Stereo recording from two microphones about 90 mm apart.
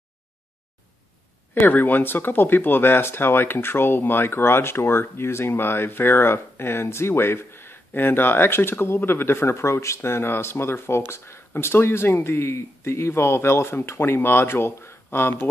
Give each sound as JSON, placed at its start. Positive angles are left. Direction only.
{"t": 1.5, "sound": "speech", "side_deg": 20}